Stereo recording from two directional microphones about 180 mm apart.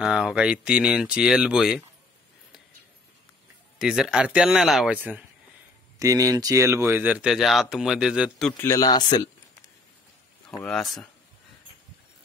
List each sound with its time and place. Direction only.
0.0 s speech: 5° right (ahead or behind)
3.7 s speech: 5° right (ahead or behind)
5.9 s speech: 20° right (ahead or behind); by 8.6 s 5° left (ahead or behind)
8.6 s speech: 20° left (ahead or behind)
10.5 s speech: 5° left (ahead or behind)